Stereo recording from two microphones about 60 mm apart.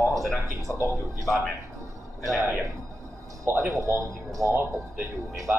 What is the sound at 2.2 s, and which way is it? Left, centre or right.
Speech, right.